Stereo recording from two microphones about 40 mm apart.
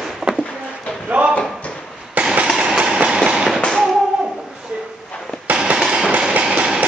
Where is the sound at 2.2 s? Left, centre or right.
Right.